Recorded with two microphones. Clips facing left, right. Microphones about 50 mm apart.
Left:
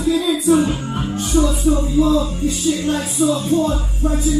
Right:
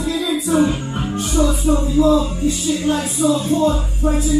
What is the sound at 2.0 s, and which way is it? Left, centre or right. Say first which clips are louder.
Music: right 2 dB; centre.